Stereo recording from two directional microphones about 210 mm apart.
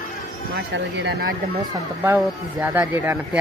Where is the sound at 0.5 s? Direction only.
55° right (ahead or behind).